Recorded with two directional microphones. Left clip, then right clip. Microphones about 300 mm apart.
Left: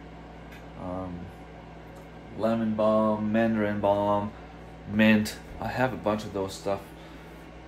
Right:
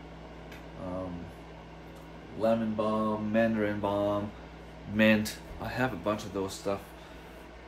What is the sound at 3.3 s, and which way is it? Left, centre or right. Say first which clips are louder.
Speech: left 2 dB; centre.